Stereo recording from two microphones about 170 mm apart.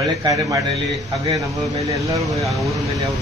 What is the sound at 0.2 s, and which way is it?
Speech, 20° right (ahead or behind).